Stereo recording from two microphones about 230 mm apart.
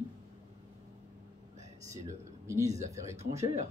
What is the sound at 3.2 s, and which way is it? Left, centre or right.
Speech, right.